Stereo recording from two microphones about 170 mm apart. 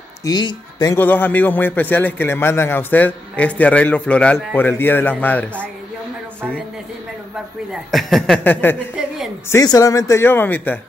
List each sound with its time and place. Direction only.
0.2 s speech: 25° left (ahead or behind)
0.9 s a man's voice: 10° left (ahead or behind)
7.7 s a man's voice: centre (ahead or behind)